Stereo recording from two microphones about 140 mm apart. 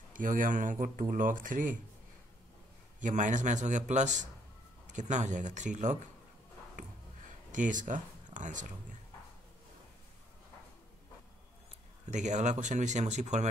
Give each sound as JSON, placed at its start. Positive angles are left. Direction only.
{"t": 0.1, "sound": "speech", "side_deg": -70}
{"t": 3.0, "sound": "speech", "side_deg": -65}
{"t": 6.8, "sound": "a sound", "side_deg": -65}
{"t": 12.1, "sound": "speech", "side_deg": -60}